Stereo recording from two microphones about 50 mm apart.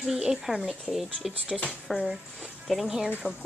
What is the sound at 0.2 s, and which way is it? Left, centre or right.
Speech, centre.